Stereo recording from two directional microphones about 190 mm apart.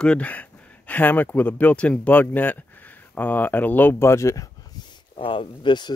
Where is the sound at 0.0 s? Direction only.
5° left (ahead or behind).